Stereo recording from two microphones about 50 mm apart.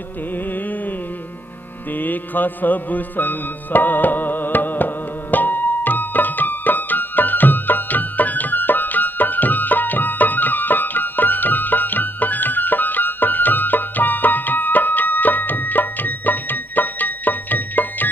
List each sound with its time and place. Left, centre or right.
2.0 s music: left